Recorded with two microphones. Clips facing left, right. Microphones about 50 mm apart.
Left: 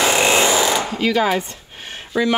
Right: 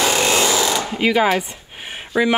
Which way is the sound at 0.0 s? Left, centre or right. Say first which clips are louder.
Left 2 dB; centre.